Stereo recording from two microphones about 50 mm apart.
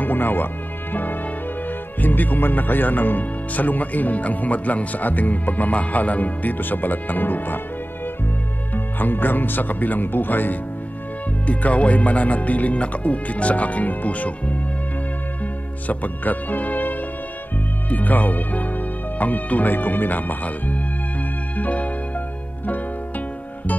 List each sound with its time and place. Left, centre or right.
0.0 s speech: left
2.0 s speech: left
8.7 s speech: left
11.4 s speech: left
15.9 s speech: left
21.5 s music: left